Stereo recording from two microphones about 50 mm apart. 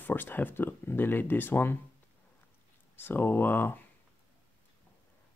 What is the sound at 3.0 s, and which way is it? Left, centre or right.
Speech, left.